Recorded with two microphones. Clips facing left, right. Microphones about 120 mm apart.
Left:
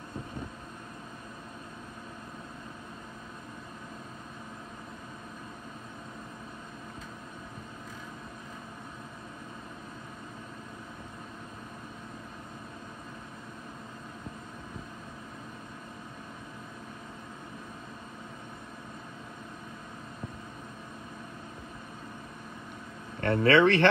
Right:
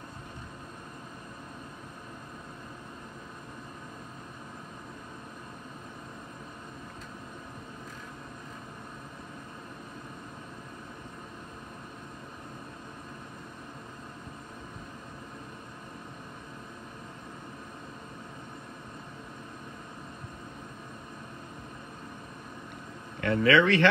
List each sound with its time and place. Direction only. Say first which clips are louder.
23.2 s speech: left 1 dB; 45° left (ahead or behind)